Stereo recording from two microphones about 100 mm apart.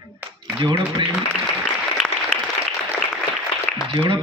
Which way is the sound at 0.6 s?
50° right (ahead or behind).